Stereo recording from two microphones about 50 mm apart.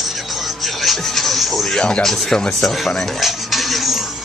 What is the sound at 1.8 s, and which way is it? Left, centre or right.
Speech, centre.